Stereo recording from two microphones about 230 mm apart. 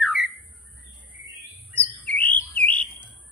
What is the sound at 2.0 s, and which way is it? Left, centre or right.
Bird, centre.